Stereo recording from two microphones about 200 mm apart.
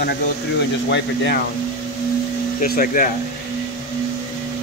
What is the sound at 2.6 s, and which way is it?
Speech, 45° left (ahead or behind).